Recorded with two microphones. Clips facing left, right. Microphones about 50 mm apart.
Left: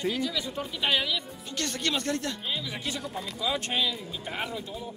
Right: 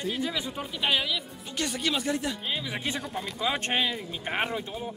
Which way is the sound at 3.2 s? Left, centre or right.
Right.